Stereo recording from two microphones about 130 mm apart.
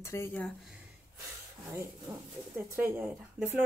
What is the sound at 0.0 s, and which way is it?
Speech, 20° left (ahead or behind).